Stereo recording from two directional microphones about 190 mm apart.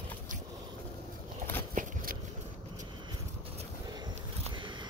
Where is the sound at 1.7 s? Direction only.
45° right (ahead or behind).